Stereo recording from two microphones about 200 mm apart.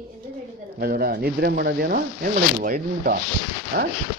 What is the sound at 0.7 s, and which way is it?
Speech, 50° right (ahead or behind).